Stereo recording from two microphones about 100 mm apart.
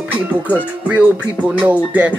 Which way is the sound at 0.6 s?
15° right (ahead or behind).